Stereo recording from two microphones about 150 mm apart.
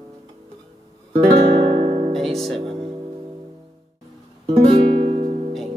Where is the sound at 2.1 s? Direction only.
Centre (ahead or behind).